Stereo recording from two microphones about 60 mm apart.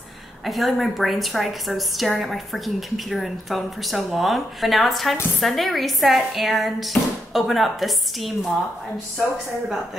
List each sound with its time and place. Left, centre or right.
0.5 s a woman's voice: centre